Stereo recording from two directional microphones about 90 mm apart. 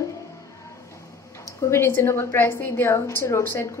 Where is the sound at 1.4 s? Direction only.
35° left (ahead or behind).